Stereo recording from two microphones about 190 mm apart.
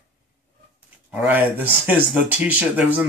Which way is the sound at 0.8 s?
10° right (ahead or behind).